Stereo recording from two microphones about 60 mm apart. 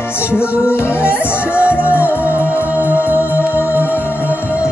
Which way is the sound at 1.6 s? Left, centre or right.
Right.